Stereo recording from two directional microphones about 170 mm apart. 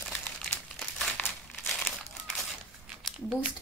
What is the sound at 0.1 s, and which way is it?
Crumpling, 5° left (ahead or behind).